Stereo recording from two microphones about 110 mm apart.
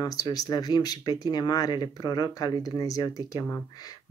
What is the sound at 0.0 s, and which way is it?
Speech, 35° left (ahead or behind).